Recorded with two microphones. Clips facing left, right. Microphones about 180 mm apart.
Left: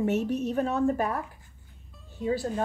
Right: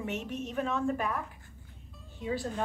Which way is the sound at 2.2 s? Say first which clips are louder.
Left 5 dB; 40° left (ahead or behind).